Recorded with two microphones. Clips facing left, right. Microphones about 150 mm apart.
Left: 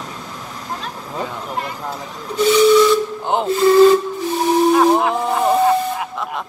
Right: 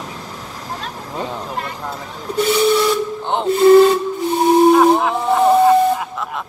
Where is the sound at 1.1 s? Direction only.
10° left (ahead or behind).